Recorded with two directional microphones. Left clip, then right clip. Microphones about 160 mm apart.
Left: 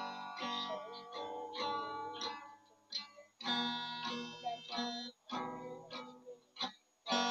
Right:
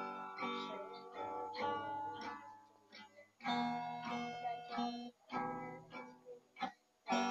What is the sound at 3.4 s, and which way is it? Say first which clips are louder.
Music: left 2 dB; 35° left (ahead or behind).